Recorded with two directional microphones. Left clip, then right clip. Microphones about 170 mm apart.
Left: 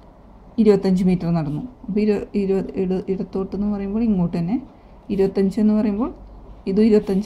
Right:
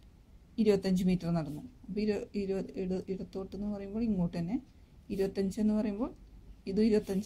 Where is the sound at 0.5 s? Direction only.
10° left (ahead or behind).